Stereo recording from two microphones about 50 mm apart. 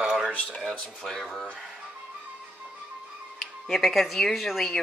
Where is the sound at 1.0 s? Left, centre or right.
Centre.